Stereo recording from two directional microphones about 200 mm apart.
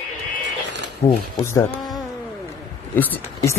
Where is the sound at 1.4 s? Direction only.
15° left (ahead or behind).